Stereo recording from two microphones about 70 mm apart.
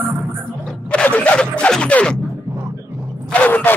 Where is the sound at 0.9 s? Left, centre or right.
Centre.